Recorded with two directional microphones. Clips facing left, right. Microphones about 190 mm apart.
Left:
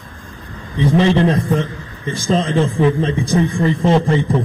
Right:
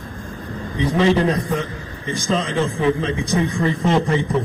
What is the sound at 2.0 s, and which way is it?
A man's voice, 30° left (ahead or behind).